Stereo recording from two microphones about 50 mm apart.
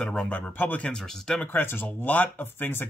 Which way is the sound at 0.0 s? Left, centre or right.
Centre.